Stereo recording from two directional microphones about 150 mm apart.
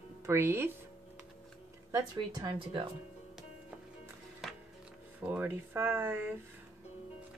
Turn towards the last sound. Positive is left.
turn(degrees=-15)  # may be behind; listen again after turning